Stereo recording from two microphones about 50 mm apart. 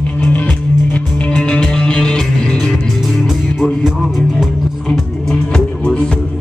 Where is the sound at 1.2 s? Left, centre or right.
Left.